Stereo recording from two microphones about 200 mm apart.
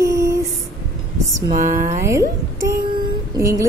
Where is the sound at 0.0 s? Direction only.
15° right (ahead or behind).